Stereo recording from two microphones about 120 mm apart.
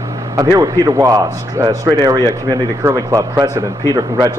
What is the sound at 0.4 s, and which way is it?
A man's voice, 30° right (ahead or behind).